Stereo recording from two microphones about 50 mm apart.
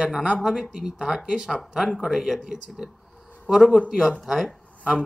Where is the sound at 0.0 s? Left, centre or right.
Centre.